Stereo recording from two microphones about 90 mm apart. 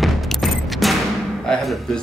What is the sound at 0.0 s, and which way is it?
Fusillade, centre (ahead or behind).